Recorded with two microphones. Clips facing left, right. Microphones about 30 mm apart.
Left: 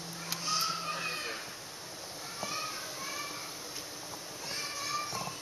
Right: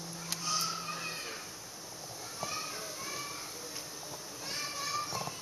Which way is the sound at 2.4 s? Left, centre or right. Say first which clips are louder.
Left 1 dB; centre.